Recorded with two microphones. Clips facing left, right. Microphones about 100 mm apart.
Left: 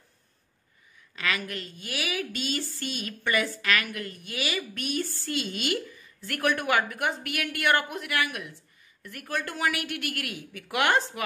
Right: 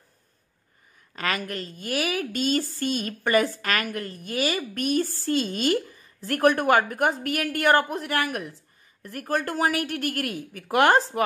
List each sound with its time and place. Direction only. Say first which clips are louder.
1.1 s a woman's voice: right 3 dB; 45° right (ahead or behind)